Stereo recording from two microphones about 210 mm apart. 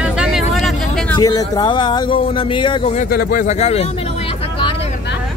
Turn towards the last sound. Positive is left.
turn(degrees=30)  # may be behind; listen again after turning